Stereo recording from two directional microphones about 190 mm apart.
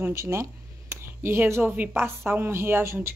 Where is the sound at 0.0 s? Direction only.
15° right (ahead or behind).